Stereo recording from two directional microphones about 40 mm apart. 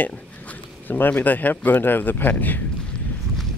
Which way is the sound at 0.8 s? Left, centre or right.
Left.